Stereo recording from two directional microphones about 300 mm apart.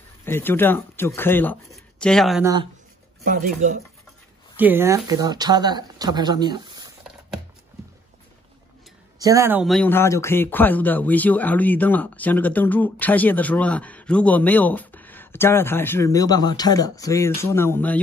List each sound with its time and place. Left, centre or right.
0.2 s speech: centre
3.3 s speech: right
4.6 s speech: centre
9.2 s speech: centre